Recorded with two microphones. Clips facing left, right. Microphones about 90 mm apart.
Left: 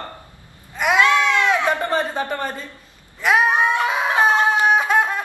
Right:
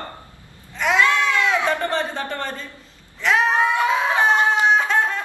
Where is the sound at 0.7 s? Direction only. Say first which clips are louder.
Left 2 dB; 15° left (ahead or behind).